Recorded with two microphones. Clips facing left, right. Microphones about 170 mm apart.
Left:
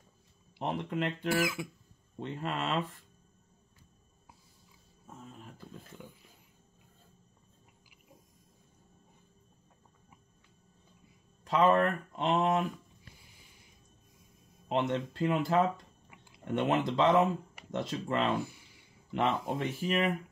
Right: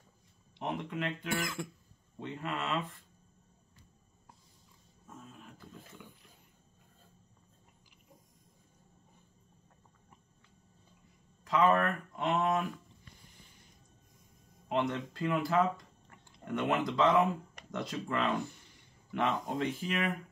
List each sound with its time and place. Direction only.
0.6 s speech: 30° left (ahead or behind)
1.3 s speech: 5° left (ahead or behind)
2.1 s speech: 35° left (ahead or behind)
11.4 s speech: 25° left (ahead or behind)
12.7 s a sound: 10° left (ahead or behind)
14.7 s speech: 25° left (ahead or behind)
18.4 s a sound: 10° left (ahead or behind)
19.1 s speech: 30° left (ahead or behind)